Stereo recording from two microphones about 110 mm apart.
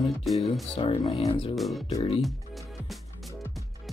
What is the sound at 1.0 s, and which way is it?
Speech, 35° left (ahead or behind).